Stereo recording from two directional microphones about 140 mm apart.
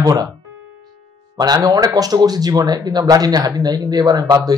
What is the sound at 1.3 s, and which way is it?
Speech, 30° right (ahead or behind).